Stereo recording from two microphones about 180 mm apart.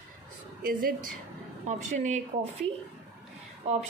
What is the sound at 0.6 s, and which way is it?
Speech, 55° right (ahead or behind).